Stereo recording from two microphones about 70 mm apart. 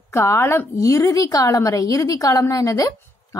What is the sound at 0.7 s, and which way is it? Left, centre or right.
A woman's voice, left.